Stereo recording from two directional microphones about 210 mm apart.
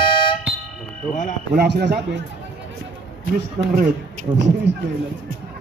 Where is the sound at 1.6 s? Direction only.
50° right (ahead or behind).